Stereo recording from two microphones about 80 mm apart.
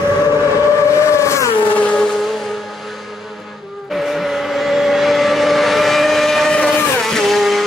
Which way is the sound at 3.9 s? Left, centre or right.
Centre.